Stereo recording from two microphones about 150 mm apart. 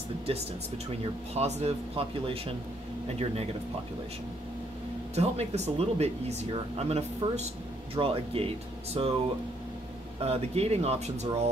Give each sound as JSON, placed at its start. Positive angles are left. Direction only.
{"t": 1.3, "sound": "speech", "side_deg": -45}
{"t": 5.1, "sound": "speech", "side_deg": -45}
{"t": 10.2, "sound": "speech", "side_deg": -45}